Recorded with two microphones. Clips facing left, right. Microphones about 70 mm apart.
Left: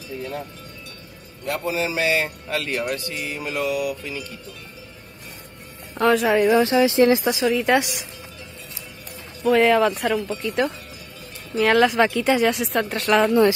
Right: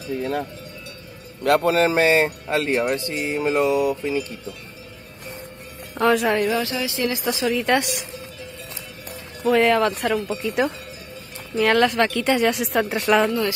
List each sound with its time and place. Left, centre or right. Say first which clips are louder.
0.2 s a man's voice: right 5 dB; right
2.0 s speech: right 4 dB; right
5.9 s speech: left 1 dB; centre
6.6 s speech: left 8 dB; left
7.3 s speech: left 1 dB; centre
9.4 s speech: left 1 dB; centre